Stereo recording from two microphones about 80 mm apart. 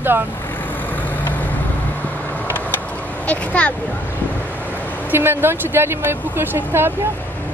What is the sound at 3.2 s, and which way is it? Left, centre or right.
Speech, centre.